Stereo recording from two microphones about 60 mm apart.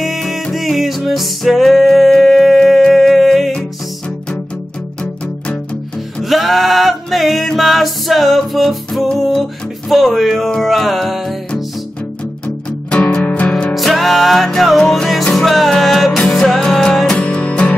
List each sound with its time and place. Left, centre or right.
0.0 s music: centre
6.2 s music: centre
12.9 s music: left
13.7 s music: centre
17.2 s music: left